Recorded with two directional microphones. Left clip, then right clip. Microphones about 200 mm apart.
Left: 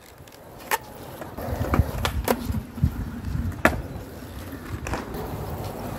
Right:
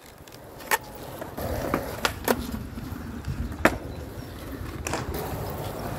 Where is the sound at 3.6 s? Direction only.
20° left (ahead or behind).